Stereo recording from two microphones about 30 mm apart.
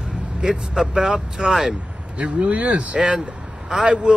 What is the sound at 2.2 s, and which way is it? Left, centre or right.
Speech, right.